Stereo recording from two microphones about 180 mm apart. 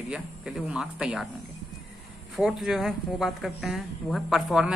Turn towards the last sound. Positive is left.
turn(degrees=0)  # may be behind; listen again after turning